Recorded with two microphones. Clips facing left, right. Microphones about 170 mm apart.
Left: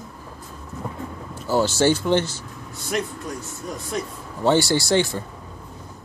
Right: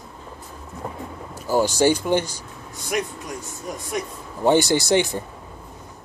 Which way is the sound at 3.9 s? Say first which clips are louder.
Right 1 dB; 15° right (ahead or behind).